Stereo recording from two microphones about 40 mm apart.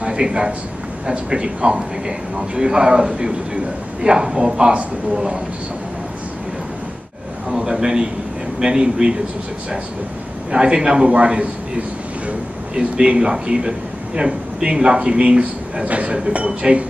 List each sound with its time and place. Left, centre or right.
0.0 s a sound: right
1.3 s speech: right
7.4 s a man's voice: centre
10.5 s speech: right
12.7 s speech: right